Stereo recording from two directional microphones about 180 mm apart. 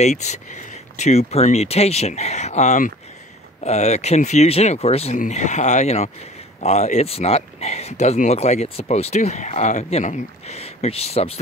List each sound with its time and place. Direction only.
0.0 s speech: 40° left (ahead or behind)